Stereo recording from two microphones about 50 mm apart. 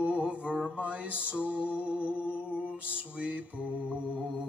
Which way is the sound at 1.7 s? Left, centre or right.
Right.